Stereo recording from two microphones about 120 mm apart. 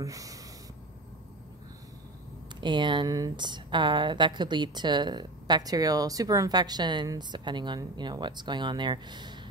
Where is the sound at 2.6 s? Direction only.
40° right (ahead or behind).